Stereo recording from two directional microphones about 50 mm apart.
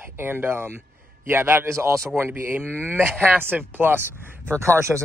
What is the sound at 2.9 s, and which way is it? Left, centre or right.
Speech, right.